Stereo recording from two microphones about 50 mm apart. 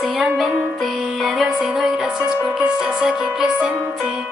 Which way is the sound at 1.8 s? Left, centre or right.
Centre.